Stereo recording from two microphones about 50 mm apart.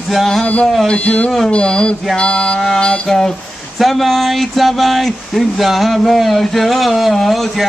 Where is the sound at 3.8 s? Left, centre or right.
Centre.